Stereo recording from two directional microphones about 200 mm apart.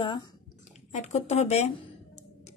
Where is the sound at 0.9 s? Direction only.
35° left (ahead or behind).